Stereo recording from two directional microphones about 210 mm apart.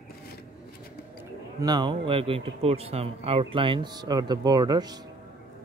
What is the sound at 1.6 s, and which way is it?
Speech, 20° right (ahead or behind).